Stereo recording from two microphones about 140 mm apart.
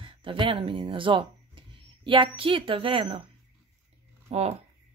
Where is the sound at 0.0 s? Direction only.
40° right (ahead or behind).